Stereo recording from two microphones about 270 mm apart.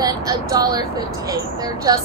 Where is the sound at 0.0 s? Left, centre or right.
Centre.